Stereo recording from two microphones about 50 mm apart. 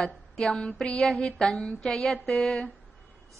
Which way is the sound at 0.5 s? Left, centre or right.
Centre.